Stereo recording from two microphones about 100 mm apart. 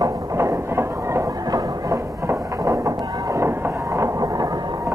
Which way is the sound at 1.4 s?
40° right (ahead or behind).